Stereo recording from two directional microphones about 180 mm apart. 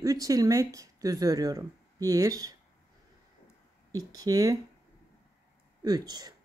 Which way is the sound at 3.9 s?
20° right (ahead or behind).